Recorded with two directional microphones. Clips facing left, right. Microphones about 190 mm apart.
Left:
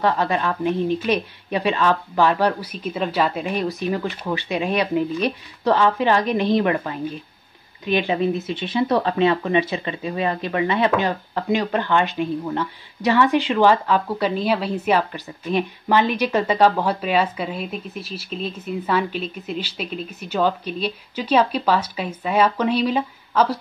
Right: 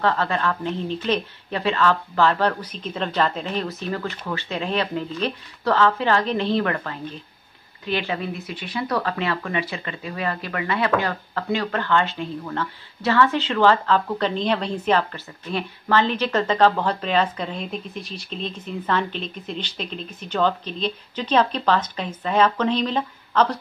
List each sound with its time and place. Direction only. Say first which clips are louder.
0.0 s speech: left 2 dB; 15° left (ahead or behind)